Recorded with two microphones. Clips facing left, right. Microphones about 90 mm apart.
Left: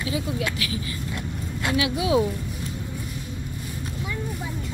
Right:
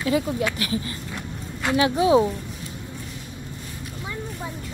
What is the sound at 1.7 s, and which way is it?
Speech, 40° right (ahead or behind).